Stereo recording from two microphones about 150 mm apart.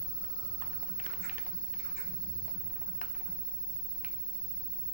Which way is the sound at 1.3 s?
65° left (ahead or behind).